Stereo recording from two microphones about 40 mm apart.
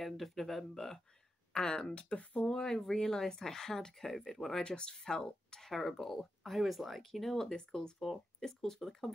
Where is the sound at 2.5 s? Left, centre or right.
Centre.